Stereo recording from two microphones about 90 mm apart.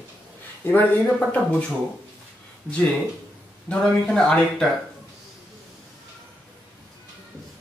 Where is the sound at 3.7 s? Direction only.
10° left (ahead or behind).